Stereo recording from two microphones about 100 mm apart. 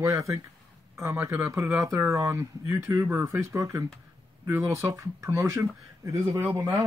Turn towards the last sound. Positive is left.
turn(degrees=-35)  # may be behind; listen again after turning